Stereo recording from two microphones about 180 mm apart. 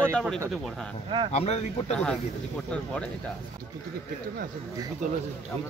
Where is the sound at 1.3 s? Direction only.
35° left (ahead or behind).